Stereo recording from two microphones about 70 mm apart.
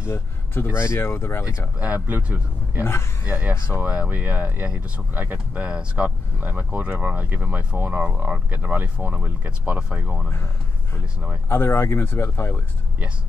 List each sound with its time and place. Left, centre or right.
0.0 s speech: left
1.8 s speech: right
2.8 s speech: left
3.3 s speech: right
11.4 s speech: left